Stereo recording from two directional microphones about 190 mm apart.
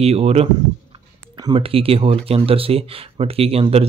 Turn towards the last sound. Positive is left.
turn(degrees=-30)  # may be behind; listen again after turning